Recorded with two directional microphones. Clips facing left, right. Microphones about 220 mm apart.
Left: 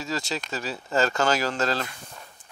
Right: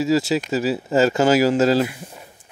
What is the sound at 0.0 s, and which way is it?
Speech, 5° right (ahead or behind).